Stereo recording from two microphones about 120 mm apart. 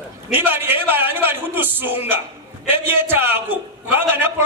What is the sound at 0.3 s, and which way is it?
A man's voice, 15° right (ahead or behind).